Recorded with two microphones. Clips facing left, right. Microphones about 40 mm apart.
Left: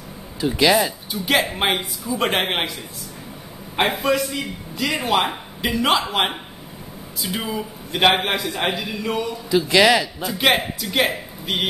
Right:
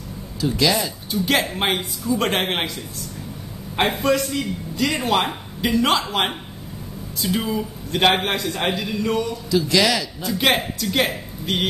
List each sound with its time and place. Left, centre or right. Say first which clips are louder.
0.4 s speech: left 3 dB; left
1.1 s a man's voice: right 1 dB; centre
3.7 s a man's voice: even; centre
9.5 s speech: left 4 dB; left
10.3 s a man's voice: left 1 dB; centre